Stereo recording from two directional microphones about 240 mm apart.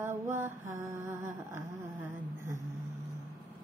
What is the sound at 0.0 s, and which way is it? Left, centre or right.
Mantra, centre.